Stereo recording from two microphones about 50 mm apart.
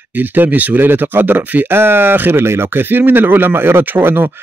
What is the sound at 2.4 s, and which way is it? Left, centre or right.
Speech, right.